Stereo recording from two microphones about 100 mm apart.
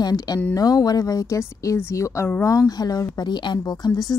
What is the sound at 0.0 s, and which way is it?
Speech, 40° left (ahead or behind).